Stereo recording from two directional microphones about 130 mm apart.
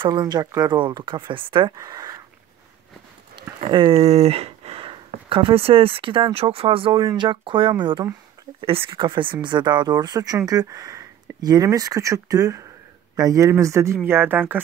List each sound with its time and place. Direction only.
0.0 s speech: 35° right (ahead or behind)
1.8 s a sound: 30° right (ahead or behind)
3.6 s speech: 45° right (ahead or behind); by 14.6 s 15° right (ahead or behind)